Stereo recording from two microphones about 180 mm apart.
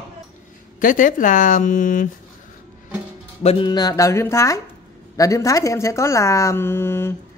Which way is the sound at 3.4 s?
30° left (ahead or behind).